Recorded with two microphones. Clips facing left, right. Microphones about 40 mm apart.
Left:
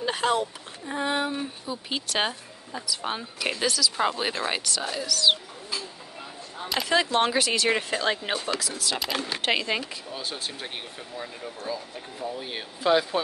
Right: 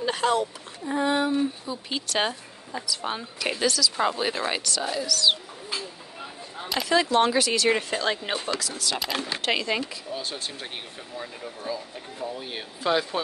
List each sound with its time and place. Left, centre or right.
0.0 s speech: centre
5.0 s speech: left
6.6 s a sound: centre
6.9 s speech: left
7.7 s speech: centre
9.5 s speech: centre
9.8 s speech: centre